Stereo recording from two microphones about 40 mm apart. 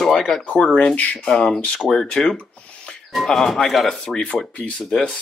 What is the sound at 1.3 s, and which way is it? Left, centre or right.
Speech, centre.